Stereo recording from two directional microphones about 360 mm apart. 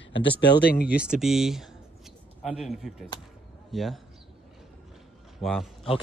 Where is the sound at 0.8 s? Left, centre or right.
Centre.